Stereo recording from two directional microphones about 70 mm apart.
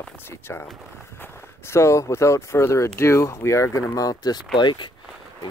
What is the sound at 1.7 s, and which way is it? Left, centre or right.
Speech, left.